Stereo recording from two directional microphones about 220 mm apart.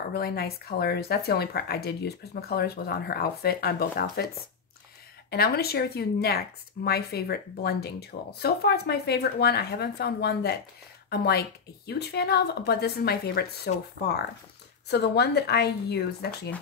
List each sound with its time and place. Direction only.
0.1 s speech: 45° left (ahead or behind)
5.3 s speech: 45° left (ahead or behind)
14.9 s speech: 50° left (ahead or behind)